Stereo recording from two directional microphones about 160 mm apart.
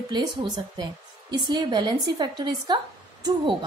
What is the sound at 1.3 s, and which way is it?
A woman's voice, 25° right (ahead or behind).